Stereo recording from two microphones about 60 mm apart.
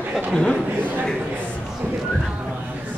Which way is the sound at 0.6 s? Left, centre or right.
Right.